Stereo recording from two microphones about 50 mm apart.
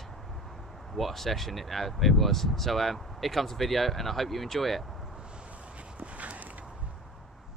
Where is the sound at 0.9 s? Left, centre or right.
Centre.